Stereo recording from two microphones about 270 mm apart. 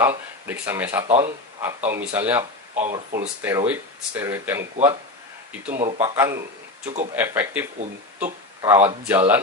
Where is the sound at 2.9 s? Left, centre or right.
Right.